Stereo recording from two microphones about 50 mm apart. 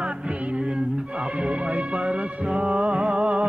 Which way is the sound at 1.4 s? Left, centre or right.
Right.